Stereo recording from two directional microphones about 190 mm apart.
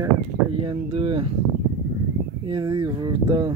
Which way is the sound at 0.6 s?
30° right (ahead or behind).